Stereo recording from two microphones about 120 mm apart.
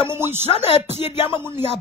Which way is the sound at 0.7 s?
60° left (ahead or behind).